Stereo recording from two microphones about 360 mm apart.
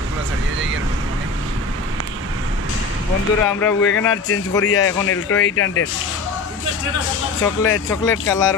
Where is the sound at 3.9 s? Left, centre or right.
Left.